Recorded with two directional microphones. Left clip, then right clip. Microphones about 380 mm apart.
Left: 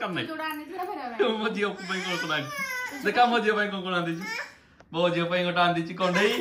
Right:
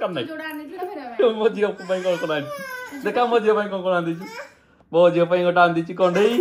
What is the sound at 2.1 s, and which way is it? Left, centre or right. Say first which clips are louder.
A child's voice: right 6 dB; centre.